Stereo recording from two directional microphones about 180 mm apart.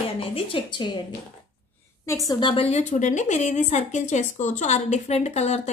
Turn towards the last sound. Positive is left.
turn(degrees=40)  # may be behind; listen again after turning